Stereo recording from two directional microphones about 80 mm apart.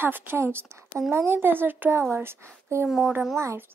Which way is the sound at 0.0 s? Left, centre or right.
Right.